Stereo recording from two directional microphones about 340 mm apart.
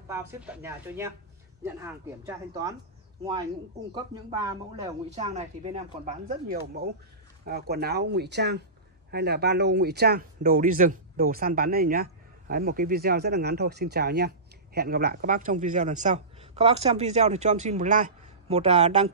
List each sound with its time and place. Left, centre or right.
0.1 s speech: centre
3.9 s speech: centre